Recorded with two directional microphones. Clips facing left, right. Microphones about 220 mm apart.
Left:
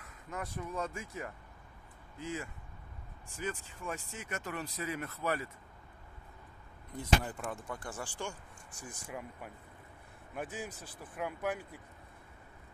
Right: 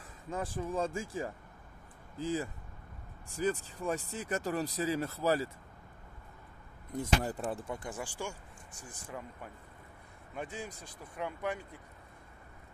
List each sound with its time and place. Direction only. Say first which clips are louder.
0.0 s speech: right 4 dB; 30° right (ahead or behind)
7.0 s speech: right 1 dB; 35° right (ahead or behind); by 8.4 s 10° right (ahead or behind)
9.0 s speech: right 1 dB; 10° left (ahead or behind)